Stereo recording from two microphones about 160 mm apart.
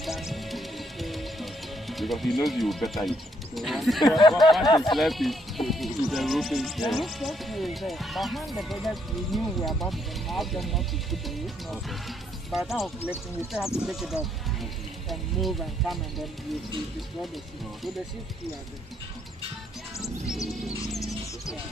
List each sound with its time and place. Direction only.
0.0 s music: centre (ahead or behind)
2.4 s speech: centre (ahead or behind)
4.6 s speech: 25° left (ahead or behind)
4.9 s speech: centre (ahead or behind)
20.2 s music: 5° right (ahead or behind)
21.0 s music: 20° left (ahead or behind)